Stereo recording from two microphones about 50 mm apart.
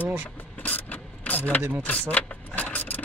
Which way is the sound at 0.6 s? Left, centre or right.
Left.